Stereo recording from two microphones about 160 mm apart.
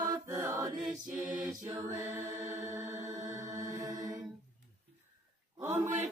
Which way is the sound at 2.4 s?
15° right (ahead or behind).